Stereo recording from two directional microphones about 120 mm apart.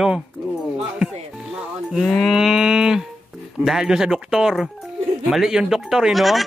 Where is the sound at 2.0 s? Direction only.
Centre (ahead or behind).